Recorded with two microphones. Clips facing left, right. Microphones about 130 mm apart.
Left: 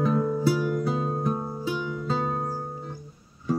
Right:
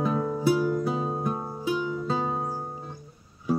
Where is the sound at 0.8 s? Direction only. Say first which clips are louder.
Left 1 dB; 10° right (ahead or behind).